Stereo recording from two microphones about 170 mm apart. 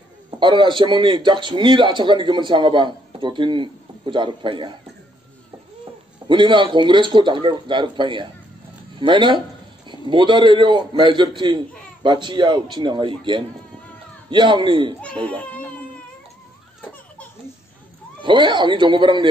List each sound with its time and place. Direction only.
0.4 s a man's voice: 30° right (ahead or behind)
6.2 s a man's voice: 30° right (ahead or behind)
15.0 s speech: 5° left (ahead or behind)
18.2 s a man's voice: 30° right (ahead or behind)